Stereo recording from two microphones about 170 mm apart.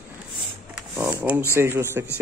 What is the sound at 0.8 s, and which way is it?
Speech, 10° right (ahead or behind).